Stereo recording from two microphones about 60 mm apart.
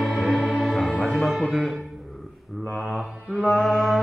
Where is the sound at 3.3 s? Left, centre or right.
Centre.